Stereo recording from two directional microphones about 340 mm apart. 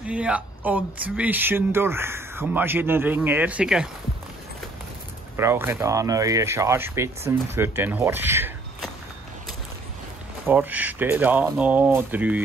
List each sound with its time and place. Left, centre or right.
0.0 s speech: centre
5.4 s speech: centre
10.4 s speech: centre